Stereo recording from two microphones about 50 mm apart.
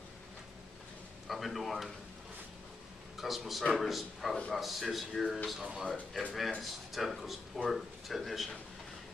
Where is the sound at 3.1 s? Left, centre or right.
Centre.